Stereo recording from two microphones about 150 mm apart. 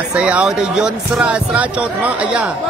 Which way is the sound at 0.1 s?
10° right (ahead or behind).